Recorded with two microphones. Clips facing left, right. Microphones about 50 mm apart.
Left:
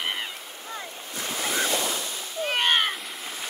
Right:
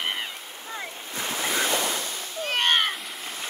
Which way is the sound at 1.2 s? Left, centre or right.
Centre.